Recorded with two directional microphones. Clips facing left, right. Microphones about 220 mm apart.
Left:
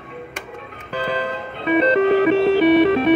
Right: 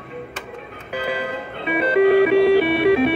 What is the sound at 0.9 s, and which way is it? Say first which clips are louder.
Music: left 1 dB; 10° right (ahead or behind).